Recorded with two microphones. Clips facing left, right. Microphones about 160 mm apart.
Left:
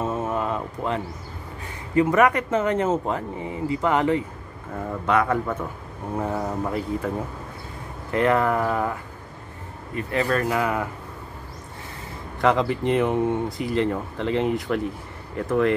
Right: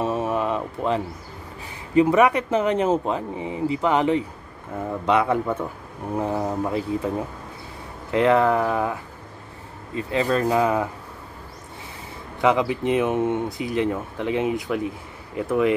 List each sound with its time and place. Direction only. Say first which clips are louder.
0.0 s a sound: right 2 dB; 15° right (ahead or behind)
2.0 s speech: right 2 dB; 15° right (ahead or behind)
8.1 s speech: right 3 dB; 10° right (ahead or behind)
9.9 s speech: right 1 dB; 20° right (ahead or behind)
12.4 s speech: right 1 dB; 10° right (ahead or behind)
13.7 s speech: even; 10° right (ahead or behind)